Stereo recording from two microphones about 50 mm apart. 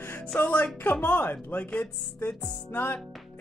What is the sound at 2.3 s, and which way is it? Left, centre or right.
Music, left.